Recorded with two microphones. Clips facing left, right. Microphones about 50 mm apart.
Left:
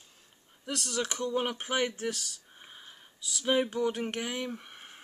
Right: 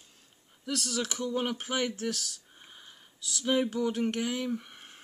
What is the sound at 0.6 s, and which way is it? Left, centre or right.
Speech, centre.